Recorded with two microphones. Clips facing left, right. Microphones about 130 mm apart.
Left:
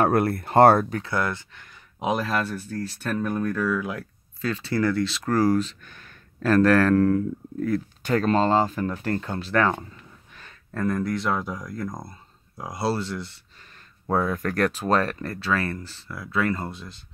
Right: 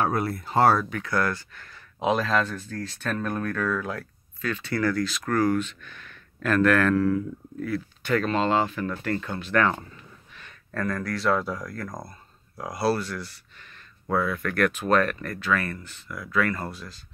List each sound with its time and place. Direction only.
0.0 s speech: 55° left (ahead or behind)
0.8 s speech: 35° left (ahead or behind)
1.1 s speech: 20° left (ahead or behind)
4.4 s speech: 30° left (ahead or behind)
14.0 s speech: 40° left (ahead or behind); by 17.0 s 20° left (ahead or behind)